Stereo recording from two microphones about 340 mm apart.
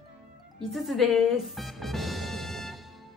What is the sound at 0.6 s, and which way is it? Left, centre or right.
Music, centre.